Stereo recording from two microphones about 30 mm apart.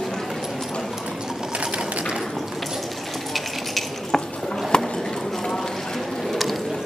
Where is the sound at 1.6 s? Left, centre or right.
Right.